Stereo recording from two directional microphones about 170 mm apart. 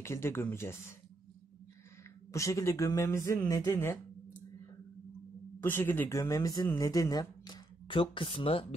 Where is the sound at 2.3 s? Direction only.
20° left (ahead or behind).